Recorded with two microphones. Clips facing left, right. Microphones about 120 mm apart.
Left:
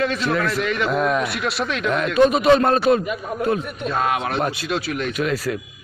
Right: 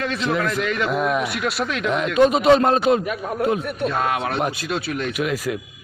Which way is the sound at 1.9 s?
20° right (ahead or behind).